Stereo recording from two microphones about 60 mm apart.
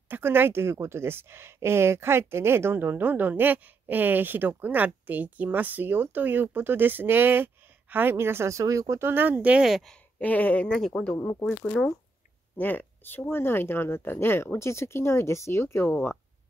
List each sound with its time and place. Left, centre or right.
0.1 s a woman's voice: right
9.0 s a woman's voice: right
9.6 s speech: centre
10.2 s speech: left
10.7 s speech: centre
12.5 s speech: left